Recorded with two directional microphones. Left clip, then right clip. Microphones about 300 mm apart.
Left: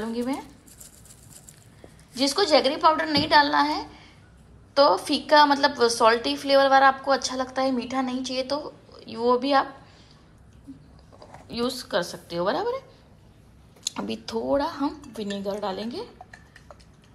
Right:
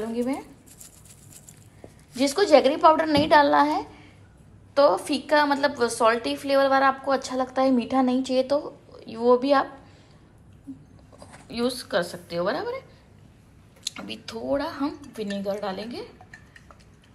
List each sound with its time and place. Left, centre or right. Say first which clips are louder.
0.0 s a woman's voice: right 1 dB; centre
2.1 s a woman's voice: right 2 dB; centre
11.4 s a woman's voice: right 1 dB; centre
13.9 s a woman's voice: left 5 dB; centre
16.3 s a sound: even; left